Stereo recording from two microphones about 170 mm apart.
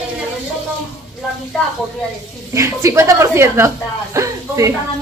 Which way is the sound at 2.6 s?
15° right (ahead or behind).